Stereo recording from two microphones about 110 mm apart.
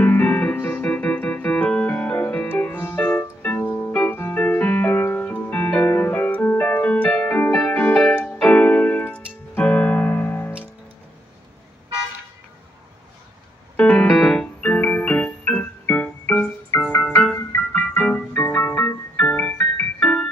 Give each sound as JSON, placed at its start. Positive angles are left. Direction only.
{"t": 0.0, "sound": "keyboard", "side_deg": 15}
{"t": 7.7, "sound": "music", "side_deg": 15}
{"t": 13.7, "sound": "keyboard", "side_deg": 10}
{"t": 16.8, "sound": "music", "side_deg": 10}